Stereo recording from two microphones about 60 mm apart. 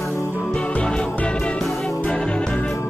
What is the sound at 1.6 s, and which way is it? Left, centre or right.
Music, centre.